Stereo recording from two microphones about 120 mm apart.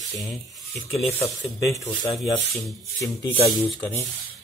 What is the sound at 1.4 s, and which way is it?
Speech, 25° left (ahead or behind).